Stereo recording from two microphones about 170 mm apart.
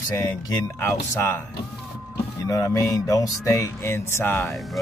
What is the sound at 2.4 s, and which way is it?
Speech, 20° left (ahead or behind).